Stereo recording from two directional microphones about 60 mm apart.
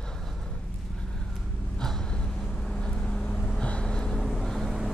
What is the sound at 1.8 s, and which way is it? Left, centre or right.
Vehicle, centre.